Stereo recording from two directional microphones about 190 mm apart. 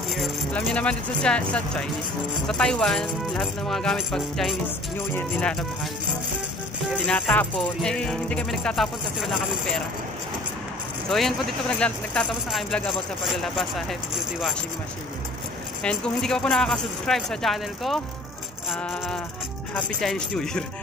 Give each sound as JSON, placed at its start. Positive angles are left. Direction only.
{"t": 0.1, "sound": "speech", "side_deg": 0}
{"t": 7.1, "sound": "speech", "side_deg": 10}
{"t": 11.1, "sound": "speech", "side_deg": 0}
{"t": 15.8, "sound": "speech", "side_deg": 5}
{"t": 18.7, "sound": "music", "side_deg": 5}
{"t": 19.7, "sound": "speech", "side_deg": 5}